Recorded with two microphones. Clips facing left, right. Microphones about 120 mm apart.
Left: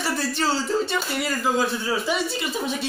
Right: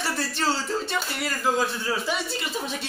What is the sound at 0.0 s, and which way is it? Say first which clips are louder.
Speech: left 2 dB; 5° left (ahead or behind).